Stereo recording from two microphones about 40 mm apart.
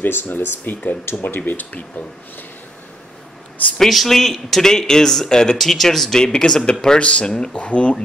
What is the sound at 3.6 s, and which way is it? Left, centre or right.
Speech, left.